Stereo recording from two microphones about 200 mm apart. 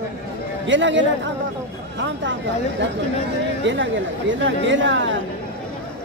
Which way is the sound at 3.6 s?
65° right (ahead or behind).